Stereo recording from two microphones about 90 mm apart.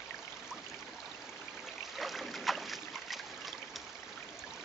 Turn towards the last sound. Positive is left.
turn(degrees=0)  # may be behind; listen again after turning